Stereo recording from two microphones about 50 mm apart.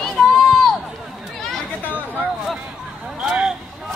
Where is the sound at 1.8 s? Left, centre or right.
Right.